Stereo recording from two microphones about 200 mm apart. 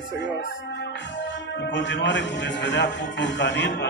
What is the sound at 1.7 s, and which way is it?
A man's voice, 65° left (ahead or behind).